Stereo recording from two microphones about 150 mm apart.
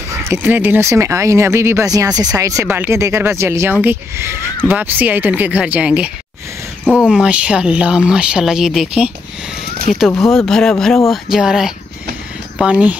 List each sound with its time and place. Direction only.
0.2 s speech: 15° right (ahead or behind)
9.9 s speech: 55° left (ahead or behind)
10.3 s speech: 5° left (ahead or behind)